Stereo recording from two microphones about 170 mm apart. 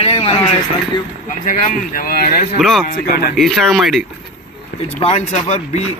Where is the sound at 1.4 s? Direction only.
50° left (ahead or behind).